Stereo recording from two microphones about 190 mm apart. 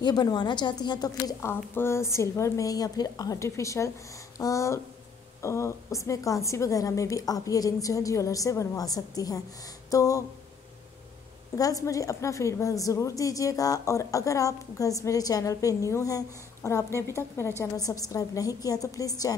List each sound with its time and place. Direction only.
0.0 s a woman's voice: 20° left (ahead or behind)
9.8 s a sound: 15° left (ahead or behind)
11.5 s a woman's voice: 20° left (ahead or behind)